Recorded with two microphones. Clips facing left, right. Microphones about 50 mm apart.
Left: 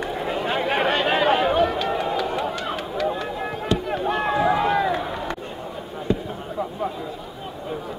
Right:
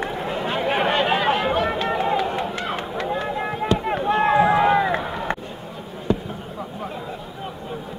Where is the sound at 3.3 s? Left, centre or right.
Right.